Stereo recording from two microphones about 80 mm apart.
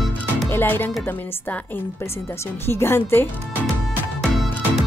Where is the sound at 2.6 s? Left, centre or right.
Left.